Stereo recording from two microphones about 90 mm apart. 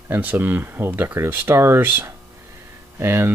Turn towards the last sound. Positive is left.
turn(degrees=-25)  # may be behind; listen again after turning